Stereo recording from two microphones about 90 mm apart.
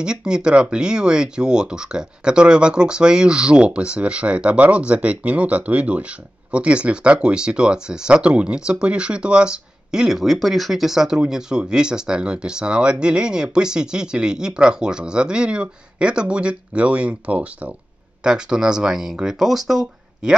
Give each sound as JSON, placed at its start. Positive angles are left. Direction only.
{"t": 0.0, "sound": "speech", "side_deg": -10}